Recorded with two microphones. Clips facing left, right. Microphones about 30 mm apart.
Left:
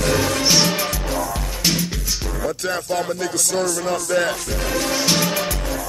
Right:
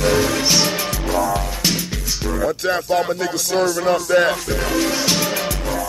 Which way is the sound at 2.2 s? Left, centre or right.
Centre.